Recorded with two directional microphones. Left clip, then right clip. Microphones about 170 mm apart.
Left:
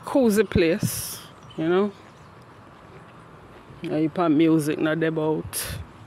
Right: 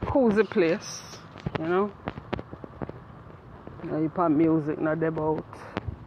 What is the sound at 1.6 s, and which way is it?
Speech, 80° left.